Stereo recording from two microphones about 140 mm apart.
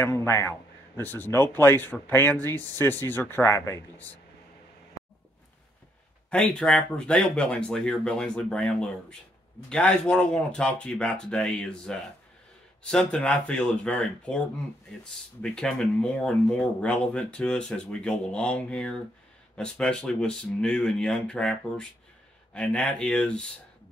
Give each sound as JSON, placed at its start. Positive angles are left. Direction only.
{"t": 0.0, "sound": "speech", "side_deg": 15}
{"t": 6.3, "sound": "speech", "side_deg": 10}
{"t": 15.4, "sound": "speech", "side_deg": 5}